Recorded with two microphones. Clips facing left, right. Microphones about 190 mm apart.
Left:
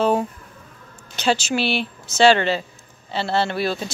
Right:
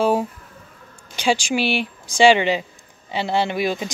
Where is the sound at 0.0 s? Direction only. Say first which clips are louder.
Even; 5° right (ahead or behind).